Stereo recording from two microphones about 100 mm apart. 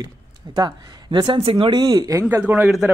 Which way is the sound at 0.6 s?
45° right (ahead or behind).